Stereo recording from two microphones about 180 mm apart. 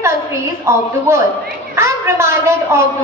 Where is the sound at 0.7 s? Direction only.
15° right (ahead or behind).